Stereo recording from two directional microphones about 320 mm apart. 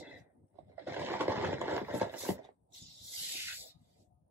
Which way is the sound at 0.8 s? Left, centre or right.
Centre.